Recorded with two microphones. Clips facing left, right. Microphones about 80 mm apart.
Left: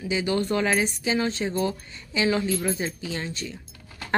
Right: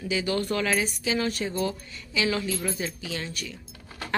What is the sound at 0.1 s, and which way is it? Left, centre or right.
A woman's voice, left.